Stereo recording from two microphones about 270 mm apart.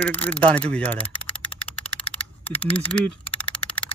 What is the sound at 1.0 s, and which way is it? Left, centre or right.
Typing, centre.